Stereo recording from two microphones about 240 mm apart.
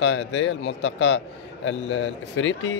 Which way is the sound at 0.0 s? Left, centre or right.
Left.